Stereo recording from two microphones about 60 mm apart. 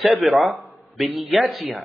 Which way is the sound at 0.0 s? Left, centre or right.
Centre.